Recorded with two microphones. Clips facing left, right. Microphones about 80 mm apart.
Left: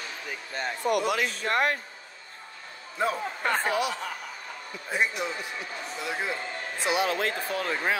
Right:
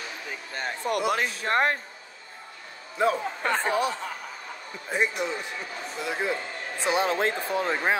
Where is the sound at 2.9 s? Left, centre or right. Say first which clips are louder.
Right 4 dB; centre.